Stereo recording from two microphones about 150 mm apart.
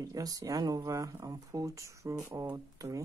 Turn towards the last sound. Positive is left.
turn(degrees=-25)  # may be behind; listen again after turning